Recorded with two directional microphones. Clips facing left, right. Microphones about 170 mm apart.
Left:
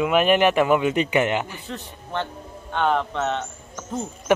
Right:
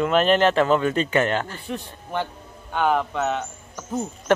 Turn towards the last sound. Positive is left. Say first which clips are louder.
# right 2 dB
turn(degrees=-5)  # may be behind; listen again after turning